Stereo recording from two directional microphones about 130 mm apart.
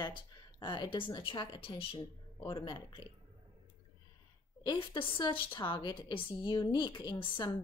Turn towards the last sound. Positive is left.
turn(degrees=35)  # may be behind; listen again after turning